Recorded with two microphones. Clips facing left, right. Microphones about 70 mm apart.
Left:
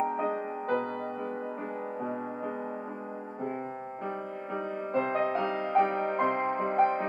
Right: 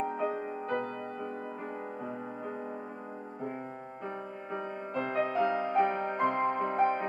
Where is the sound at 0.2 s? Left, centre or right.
Left.